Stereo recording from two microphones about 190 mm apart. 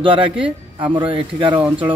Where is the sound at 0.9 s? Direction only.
25° right (ahead or behind).